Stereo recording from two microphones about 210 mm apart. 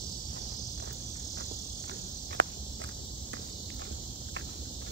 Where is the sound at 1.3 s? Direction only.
60° right (ahead or behind).